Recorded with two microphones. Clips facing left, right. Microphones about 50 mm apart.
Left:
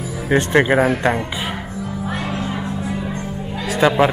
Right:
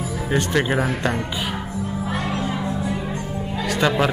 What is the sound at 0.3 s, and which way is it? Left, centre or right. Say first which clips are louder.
Speech: left 6 dB; left.